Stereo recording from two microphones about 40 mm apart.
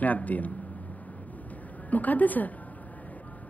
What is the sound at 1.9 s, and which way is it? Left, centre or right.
Speech, left.